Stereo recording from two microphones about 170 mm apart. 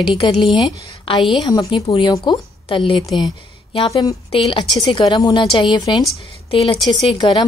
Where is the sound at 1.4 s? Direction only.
25° left (ahead or behind).